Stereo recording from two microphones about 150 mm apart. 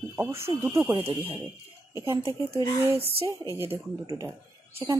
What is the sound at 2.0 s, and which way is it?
Speech, 20° right (ahead or behind).